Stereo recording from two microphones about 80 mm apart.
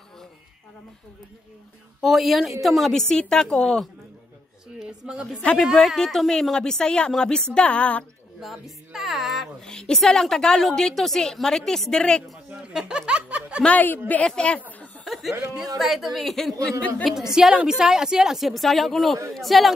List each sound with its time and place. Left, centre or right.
2.0 s a woman's voice: centre
5.0 s a woman's voice: centre
8.4 s a woman's voice: centre
9.7 s a woman's voice: centre
12.4 s speech: centre
13.6 s a woman's voice: centre
15.1 s chuckle: centre
15.8 s a woman's voice: centre